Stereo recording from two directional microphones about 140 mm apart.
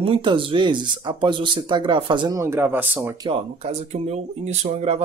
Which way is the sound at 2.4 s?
15° right (ahead or behind).